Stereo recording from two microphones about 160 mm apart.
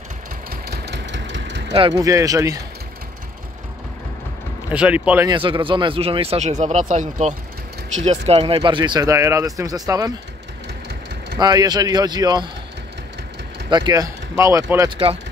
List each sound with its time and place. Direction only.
0.5 s engine: 85° right
1.9 s speech: 20° right (ahead or behind)
4.6 s speech: 10° right (ahead or behind)
5.2 s speech: 30° right (ahead or behind)
11.3 s speech: 25° right (ahead or behind)
13.7 s speech: 25° right (ahead or behind)
15.0 s speech: 35° right (ahead or behind)